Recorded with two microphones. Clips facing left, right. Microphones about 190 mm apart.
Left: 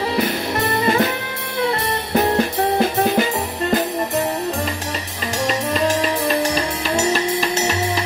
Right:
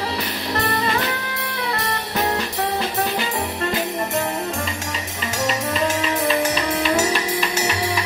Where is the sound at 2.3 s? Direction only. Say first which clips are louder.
Left 5 dB; 50° left (ahead or behind).